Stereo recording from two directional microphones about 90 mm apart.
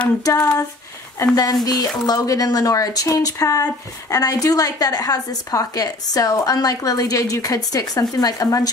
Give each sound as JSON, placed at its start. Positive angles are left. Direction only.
{"t": 1.2, "sound": "speech", "side_deg": 45}